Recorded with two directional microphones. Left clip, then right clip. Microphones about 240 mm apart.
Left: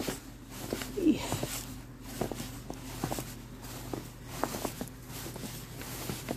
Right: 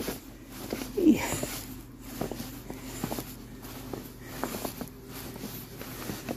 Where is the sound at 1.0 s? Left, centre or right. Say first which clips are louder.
Right 5 dB; right.